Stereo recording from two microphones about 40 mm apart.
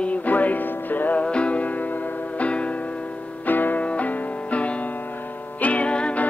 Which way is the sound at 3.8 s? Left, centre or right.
Left.